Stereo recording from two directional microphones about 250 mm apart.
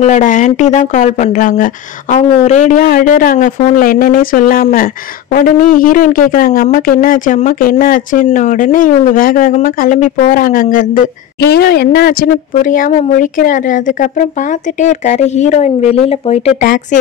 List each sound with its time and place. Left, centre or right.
0.0 s speech: left